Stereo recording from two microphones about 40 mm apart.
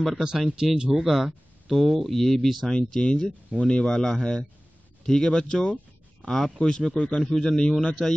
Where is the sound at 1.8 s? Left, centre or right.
Centre.